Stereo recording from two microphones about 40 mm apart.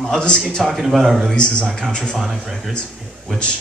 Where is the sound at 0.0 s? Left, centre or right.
Centre.